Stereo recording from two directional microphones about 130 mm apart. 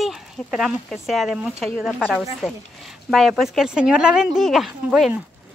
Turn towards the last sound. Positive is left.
turn(degrees=-5)  # may be behind; listen again after turning